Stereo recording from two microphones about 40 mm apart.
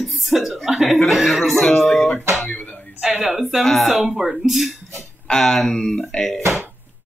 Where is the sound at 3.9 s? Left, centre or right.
Centre.